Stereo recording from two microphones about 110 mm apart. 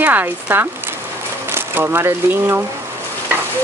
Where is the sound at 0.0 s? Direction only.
15° right (ahead or behind).